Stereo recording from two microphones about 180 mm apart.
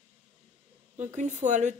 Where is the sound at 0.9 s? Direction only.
40° right (ahead or behind).